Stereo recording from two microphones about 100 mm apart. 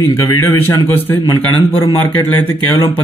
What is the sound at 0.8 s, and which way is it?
Speech, 20° left (ahead or behind).